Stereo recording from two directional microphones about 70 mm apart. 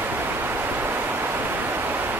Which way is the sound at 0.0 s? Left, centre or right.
Right.